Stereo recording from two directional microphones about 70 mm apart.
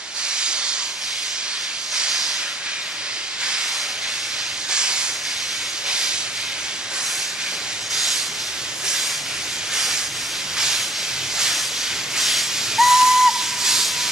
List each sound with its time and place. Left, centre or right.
0.4 s hiss: centre
2.0 s hiss: centre
4.7 s hiss: centre
7.9 s hiss: centre
11.3 s hiss: centre